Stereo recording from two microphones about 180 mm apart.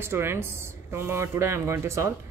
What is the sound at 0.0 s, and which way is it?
Speech, 15° right (ahead or behind).